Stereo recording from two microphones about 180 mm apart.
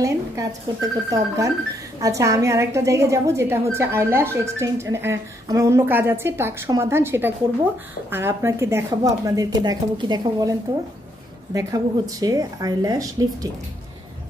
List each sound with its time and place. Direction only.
0.0 s a woman's voice: 20° right (ahead or behind)
11.5 s speech: 20° right (ahead or behind)